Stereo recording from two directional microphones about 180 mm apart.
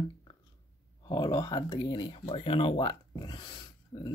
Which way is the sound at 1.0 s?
20° left (ahead or behind).